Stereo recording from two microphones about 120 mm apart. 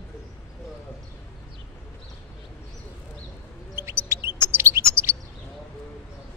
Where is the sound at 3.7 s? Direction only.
20° right (ahead or behind).